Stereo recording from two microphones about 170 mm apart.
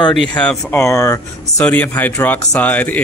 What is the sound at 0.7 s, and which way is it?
Speech, 15° left (ahead or behind).